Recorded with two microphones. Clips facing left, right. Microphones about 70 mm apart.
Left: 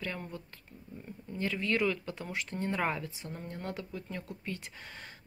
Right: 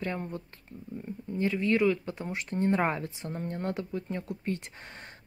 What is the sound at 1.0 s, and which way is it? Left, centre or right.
Speech, right.